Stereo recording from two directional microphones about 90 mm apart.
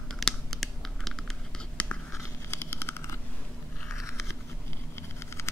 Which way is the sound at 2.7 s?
25° left (ahead or behind).